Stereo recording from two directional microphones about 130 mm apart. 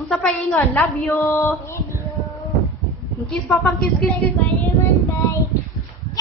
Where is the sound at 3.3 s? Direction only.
5° left (ahead or behind).